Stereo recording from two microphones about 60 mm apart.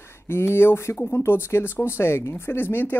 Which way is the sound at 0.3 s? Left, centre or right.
Left.